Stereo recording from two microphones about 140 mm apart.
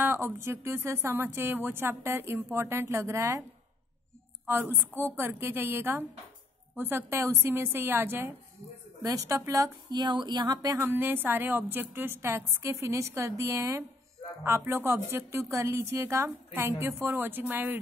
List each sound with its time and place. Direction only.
0.0 s a woman's voice: 15° right (ahead or behind)
5.0 s a woman's voice: 15° right (ahead or behind)